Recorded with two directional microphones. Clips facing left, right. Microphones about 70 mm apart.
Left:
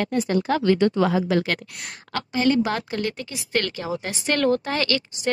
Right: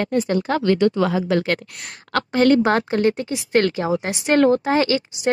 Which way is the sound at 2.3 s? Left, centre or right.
Right.